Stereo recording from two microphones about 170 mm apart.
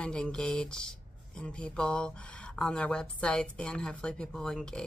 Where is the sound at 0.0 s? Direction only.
5° left (ahead or behind).